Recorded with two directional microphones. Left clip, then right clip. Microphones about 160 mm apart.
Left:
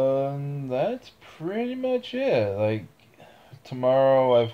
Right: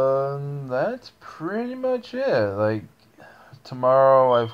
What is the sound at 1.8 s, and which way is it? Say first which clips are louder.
Speech: right 2 dB; 5° right (ahead or behind).